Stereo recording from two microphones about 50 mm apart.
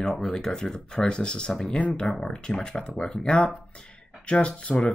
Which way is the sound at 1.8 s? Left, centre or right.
Left.